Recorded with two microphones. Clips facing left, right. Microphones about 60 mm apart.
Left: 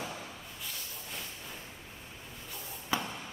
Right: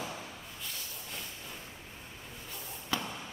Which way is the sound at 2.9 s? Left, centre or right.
Left.